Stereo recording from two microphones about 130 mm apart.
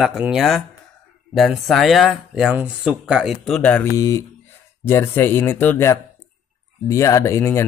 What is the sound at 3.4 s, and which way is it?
Speech, 10° left (ahead or behind).